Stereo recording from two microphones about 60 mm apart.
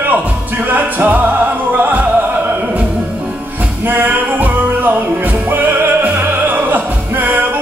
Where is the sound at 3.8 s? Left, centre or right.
Right.